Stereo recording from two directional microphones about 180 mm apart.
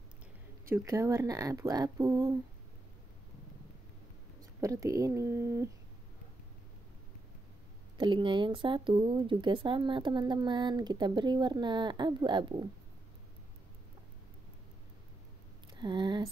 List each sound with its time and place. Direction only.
0.7 s speech: 15° right (ahead or behind)
4.6 s speech: 15° right (ahead or behind)
8.0 s speech: 25° right (ahead or behind)
15.8 s speech: 25° right (ahead or behind)